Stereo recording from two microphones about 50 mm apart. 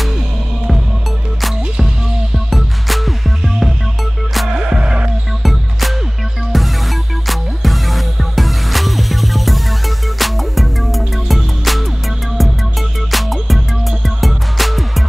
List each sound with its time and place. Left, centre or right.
2.3 s music: centre
4.5 s music: centre
5.4 s music: centre
13.1 s music: centre